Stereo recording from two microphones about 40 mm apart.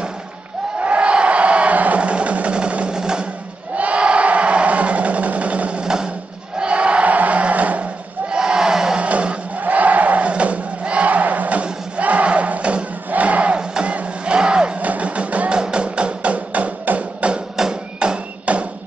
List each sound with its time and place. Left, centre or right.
0.7 s music: right
3.7 s a sound: right
5.9 s music: centre
6.6 s crowd: right
8.3 s battle cry: right
9.0 s music: right
9.6 s crowd: right
12.0 s battle cry: right
13.6 s music: right
14.8 s music: right
15.5 s music: right
17.6 s music: centre
17.9 s music: right